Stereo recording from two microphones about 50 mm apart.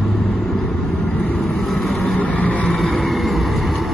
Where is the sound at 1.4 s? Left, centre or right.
Centre.